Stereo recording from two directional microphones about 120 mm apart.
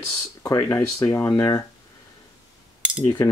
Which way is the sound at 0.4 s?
30° left (ahead or behind).